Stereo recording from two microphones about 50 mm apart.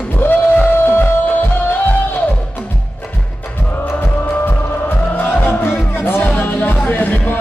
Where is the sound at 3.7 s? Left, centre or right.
Left.